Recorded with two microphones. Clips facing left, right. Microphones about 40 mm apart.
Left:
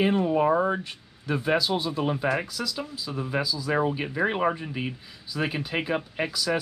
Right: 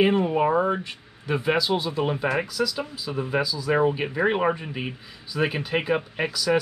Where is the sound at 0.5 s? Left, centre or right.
Right.